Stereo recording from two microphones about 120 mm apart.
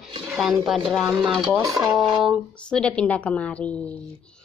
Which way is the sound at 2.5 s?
10° left (ahead or behind).